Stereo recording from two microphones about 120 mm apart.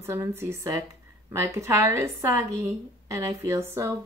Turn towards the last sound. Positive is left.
turn(degrees=-25)  # may be behind; listen again after turning